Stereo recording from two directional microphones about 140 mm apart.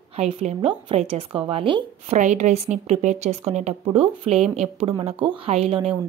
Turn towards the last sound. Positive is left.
turn(degrees=-45)  # may be behind; listen again after turning